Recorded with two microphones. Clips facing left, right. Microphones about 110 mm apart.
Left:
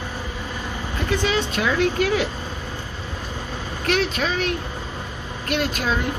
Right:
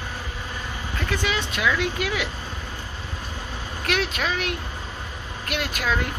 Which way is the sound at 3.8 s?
35° left (ahead or behind).